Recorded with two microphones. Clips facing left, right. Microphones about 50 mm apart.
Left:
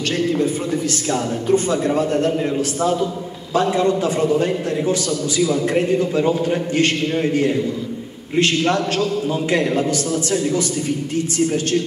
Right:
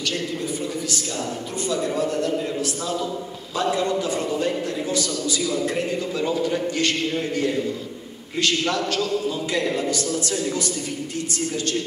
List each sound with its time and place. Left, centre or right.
1.1 s a man's voice: left
8.4 s a man's voice: left